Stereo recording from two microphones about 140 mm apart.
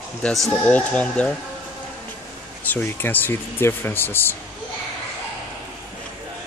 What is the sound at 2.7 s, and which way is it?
Speech, 15° left (ahead or behind).